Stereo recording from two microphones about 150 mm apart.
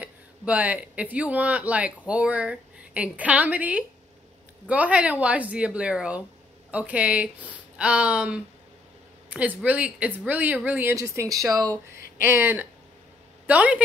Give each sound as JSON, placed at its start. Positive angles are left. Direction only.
{"t": 0.0, "sound": "speech", "side_deg": -10}